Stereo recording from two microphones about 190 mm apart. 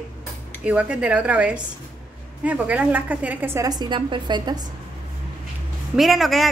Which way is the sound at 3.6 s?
20° right (ahead or behind).